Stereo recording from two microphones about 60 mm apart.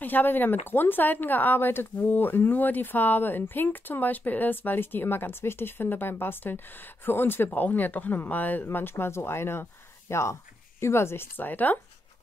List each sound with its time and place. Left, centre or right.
0.0 s speech: left
8.6 s speech: left
11.3 s speech: left